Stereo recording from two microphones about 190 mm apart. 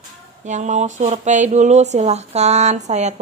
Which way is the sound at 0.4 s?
40° right (ahead or behind).